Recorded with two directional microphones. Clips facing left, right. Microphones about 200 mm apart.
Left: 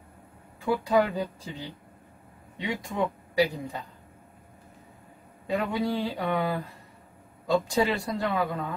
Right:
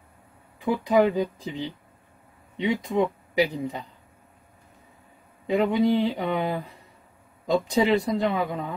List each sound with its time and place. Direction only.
0.7 s speech: 15° right (ahead or behind)
5.5 s speech: 20° right (ahead or behind)